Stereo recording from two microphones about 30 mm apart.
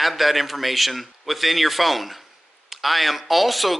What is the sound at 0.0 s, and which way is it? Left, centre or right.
Speech, centre.